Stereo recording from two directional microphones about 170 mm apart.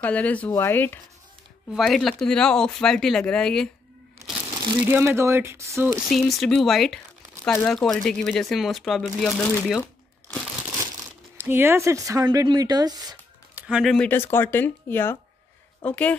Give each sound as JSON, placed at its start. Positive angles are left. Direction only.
{"t": 0.0, "sound": "speech", "side_deg": 10}
{"t": 1.7, "sound": "speech", "side_deg": 0}
{"t": 4.8, "sound": "speech", "side_deg": -15}
{"t": 6.0, "sound": "speech", "side_deg": 0}
{"t": 11.3, "sound": "speech", "side_deg": -15}
{"t": 13.6, "sound": "speech", "side_deg": -5}
{"t": 13.9, "sound": "speech", "side_deg": 10}